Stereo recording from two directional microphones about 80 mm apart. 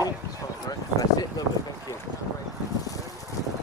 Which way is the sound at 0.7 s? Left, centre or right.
Left.